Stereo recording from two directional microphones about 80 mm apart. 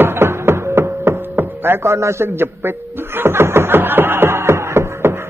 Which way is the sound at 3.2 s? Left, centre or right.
Right.